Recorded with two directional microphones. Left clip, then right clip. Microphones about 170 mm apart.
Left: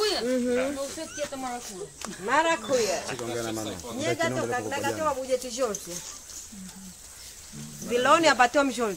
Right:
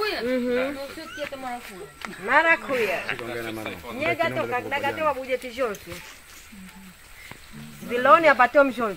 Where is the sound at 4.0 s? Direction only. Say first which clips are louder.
Right 3 dB; centre (ahead or behind).